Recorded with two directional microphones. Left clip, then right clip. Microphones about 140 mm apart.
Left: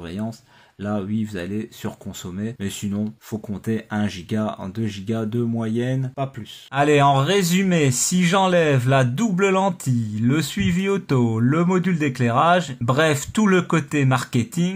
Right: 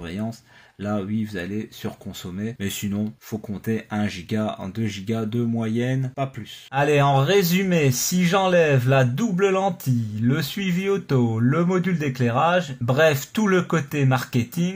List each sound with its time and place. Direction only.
0.8 s speech: 5° left (ahead or behind)
3.3 s speech: 10° left (ahead or behind)
6.7 s speech: 20° left (ahead or behind)